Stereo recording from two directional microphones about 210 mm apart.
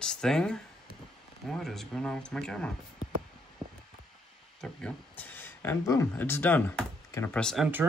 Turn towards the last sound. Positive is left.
turn(degrees=5)  # may be behind; listen again after turning